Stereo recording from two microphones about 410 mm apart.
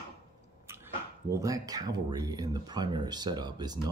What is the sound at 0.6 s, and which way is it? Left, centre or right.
Speech, centre.